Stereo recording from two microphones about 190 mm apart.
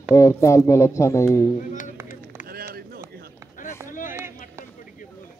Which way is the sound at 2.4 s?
50° right (ahead or behind).